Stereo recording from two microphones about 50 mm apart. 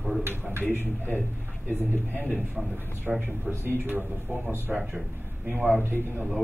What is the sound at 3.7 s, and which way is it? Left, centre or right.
Speech, right.